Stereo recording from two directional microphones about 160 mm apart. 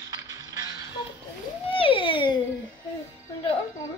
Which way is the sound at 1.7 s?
35° left (ahead or behind).